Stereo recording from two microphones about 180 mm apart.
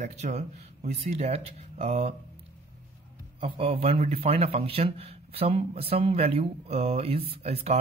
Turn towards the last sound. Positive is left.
turn(degrees=-35)  # may be behind; listen again after turning